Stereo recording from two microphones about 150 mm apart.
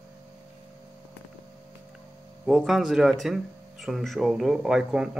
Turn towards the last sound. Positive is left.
turn(degrees=-5)  # may be behind; listen again after turning